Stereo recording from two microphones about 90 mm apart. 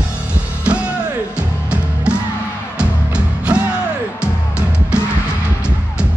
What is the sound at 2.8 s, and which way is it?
Music, 10° right (ahead or behind).